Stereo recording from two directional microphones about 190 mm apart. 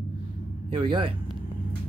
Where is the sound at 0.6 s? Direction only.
25° right (ahead or behind).